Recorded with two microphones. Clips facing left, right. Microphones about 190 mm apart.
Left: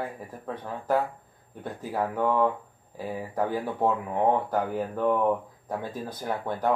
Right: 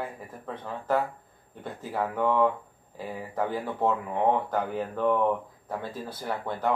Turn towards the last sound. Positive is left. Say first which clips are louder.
# left 2 dB
turn(degrees=15)  # may be behind; listen again after turning